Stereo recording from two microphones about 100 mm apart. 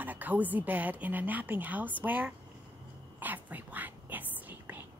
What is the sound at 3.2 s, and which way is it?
Whispering, 15° right (ahead or behind).